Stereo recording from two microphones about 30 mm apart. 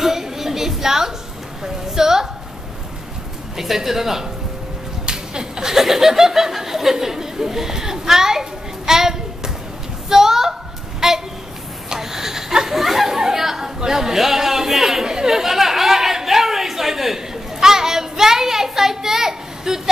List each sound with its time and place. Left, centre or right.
0.0 s a sound: centre
3.5 s a man's voice: centre
5.0 s speech: right
10.0 s a sound: centre
13.2 s chatter: centre
13.7 s a man's voice: centre
15.0 s chatter: centre